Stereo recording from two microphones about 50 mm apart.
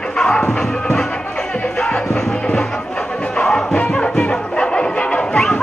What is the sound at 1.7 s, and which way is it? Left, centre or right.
Music, centre.